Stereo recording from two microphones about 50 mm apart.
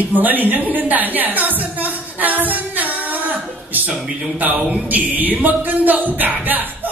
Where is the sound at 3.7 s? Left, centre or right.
Right.